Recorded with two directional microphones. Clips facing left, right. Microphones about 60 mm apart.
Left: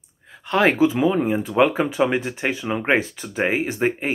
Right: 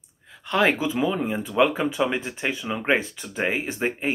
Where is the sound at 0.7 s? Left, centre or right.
Centre.